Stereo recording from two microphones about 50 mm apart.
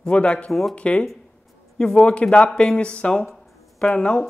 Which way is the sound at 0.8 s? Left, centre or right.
Left.